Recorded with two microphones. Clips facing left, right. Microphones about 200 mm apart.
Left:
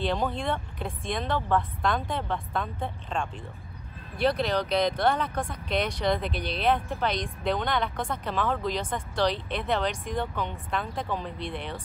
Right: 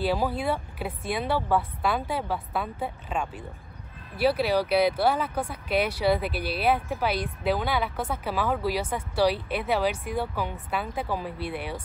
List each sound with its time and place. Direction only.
0.0 s speech: 5° right (ahead or behind)